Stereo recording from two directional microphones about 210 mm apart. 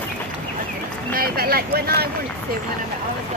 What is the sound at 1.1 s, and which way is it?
Speech, 45° right (ahead or behind).